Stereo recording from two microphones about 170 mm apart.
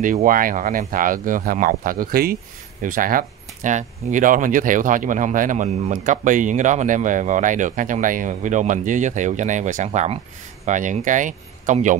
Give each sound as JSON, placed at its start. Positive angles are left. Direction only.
{"t": 0.0, "sound": "speech", "side_deg": -50}